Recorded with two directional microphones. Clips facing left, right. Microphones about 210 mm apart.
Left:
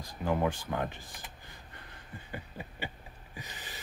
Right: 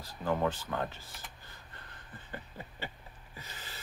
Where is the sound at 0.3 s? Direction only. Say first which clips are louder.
Left 1 dB; 10° left (ahead or behind).